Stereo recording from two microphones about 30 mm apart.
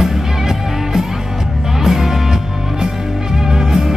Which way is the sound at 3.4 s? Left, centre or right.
Centre.